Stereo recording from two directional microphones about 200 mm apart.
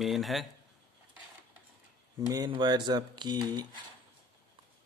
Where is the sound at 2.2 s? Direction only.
20° right (ahead or behind).